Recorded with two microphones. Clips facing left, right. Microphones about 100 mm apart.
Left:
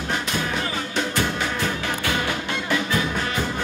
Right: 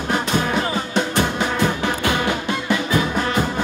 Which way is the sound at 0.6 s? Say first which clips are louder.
Right 4 dB; 25° right (ahead or behind).